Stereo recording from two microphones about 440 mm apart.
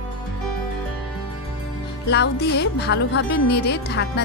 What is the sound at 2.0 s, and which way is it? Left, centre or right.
Speech, left.